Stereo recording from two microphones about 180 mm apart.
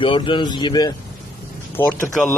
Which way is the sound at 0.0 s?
30° left (ahead or behind).